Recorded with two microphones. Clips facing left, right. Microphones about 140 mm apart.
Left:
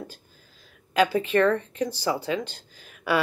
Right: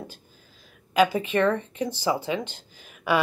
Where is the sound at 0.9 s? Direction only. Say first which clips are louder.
Even; 10° right (ahead or behind).